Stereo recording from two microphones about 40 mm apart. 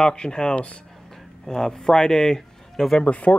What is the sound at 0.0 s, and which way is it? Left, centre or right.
Speech, left.